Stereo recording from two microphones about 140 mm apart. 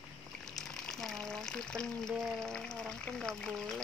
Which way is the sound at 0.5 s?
Centre (ahead or behind).